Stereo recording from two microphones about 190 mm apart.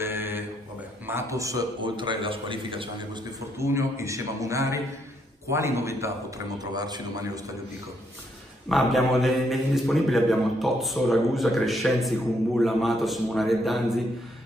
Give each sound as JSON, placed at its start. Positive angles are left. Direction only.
{"t": 0.0, "sound": "a sound", "side_deg": -10}
{"t": 1.0, "sound": "a man's voice", "side_deg": -15}
{"t": 3.5, "sound": "a man's voice", "side_deg": -15}
{"t": 8.6, "sound": "a man's voice", "side_deg": 0}